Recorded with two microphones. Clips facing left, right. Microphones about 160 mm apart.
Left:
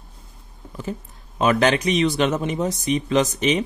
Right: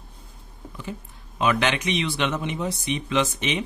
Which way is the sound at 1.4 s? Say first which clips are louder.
Left 5 dB; 40° left (ahead or behind).